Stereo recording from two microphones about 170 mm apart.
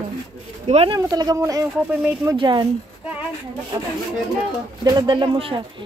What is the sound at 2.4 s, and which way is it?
Speech, 25° right (ahead or behind).